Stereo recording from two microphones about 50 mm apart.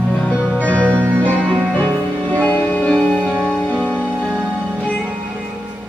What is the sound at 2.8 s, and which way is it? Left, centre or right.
Music, centre.